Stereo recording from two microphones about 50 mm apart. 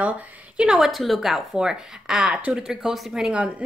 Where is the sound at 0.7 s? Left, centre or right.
Centre.